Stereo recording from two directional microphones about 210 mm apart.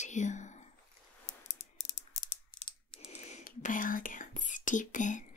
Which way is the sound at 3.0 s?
35° left (ahead or behind).